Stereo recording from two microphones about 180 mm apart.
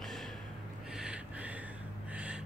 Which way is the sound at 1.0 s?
5° right (ahead or behind).